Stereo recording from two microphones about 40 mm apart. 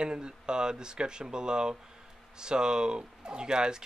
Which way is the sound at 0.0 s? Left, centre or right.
Right.